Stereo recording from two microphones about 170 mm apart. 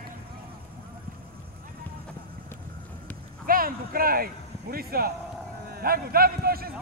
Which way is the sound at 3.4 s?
55° right (ahead or behind).